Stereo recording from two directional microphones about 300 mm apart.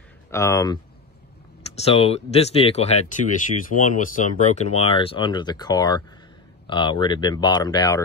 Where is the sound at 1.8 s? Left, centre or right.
Centre.